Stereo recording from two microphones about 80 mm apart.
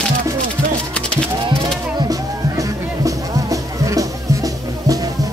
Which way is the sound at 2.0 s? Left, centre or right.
Right.